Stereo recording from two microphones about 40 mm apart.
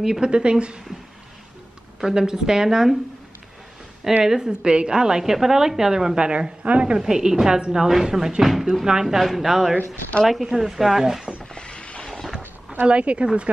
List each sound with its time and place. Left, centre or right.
0.0 s a woman's voice: centre
2.0 s a woman's voice: centre
4.2 s a woman's voice: centre
7.0 s a woman's voice: centre
11.5 s a sound: left
12.8 s a woman's voice: right